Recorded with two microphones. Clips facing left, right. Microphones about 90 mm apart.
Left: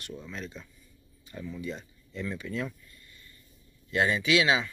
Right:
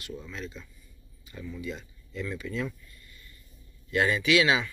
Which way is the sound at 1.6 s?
30° left (ahead or behind).